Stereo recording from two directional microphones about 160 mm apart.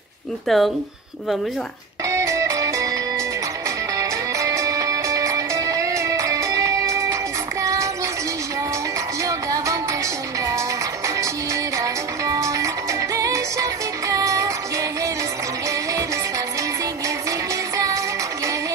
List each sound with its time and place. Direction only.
0.5 s speech: centre (ahead or behind)
2.0 s music: 20° right (ahead or behind)
4.0 s music: 20° right (ahead or behind)
7.6 s child singing: 20° right (ahead or behind)
9.2 s music: 20° right (ahead or behind)
13.1 s music: 20° right (ahead or behind)